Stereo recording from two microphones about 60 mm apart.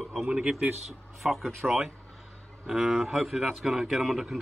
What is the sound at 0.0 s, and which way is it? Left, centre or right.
A man's voice, centre.